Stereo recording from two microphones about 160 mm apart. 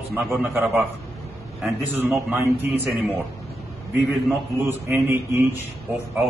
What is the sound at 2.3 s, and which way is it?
Speech, 15° right (ahead or behind).